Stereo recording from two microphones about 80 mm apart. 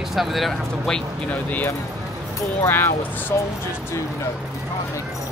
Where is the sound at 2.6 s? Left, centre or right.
Left.